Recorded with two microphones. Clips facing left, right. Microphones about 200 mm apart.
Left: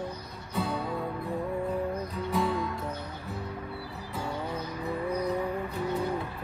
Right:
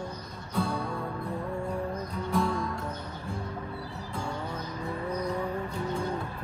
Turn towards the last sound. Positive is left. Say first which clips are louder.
# left 2 dB
turn(degrees=10)  # may be behind; listen again after turning